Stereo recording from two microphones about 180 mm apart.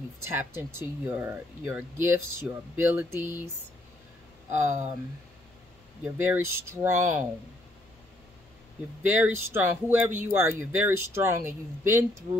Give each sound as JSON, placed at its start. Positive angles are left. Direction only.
{"t": 0.2, "sound": "speech", "side_deg": -10}
{"t": 4.5, "sound": "speech", "side_deg": -40}
{"t": 6.0, "sound": "speech", "side_deg": -10}
{"t": 9.2, "sound": "speech", "side_deg": -10}